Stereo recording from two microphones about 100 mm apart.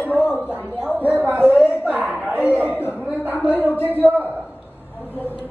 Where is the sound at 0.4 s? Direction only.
15° right (ahead or behind).